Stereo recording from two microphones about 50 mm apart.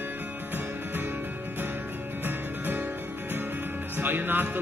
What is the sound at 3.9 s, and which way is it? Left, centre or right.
Music, right.